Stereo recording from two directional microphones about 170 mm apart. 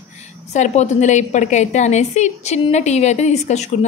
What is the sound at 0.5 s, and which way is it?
A woman's voice, 45° left (ahead or behind).